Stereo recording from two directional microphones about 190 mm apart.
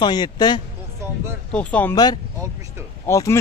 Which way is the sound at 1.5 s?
5° left (ahead or behind).